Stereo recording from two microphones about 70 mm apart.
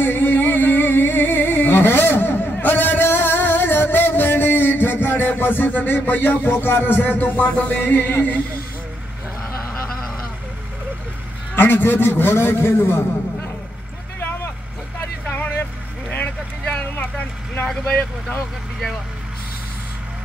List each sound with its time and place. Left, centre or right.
0.0 s music: left
11.5 s a man's voice: left
15.2 s vehicle: left
17.8 s speech: centre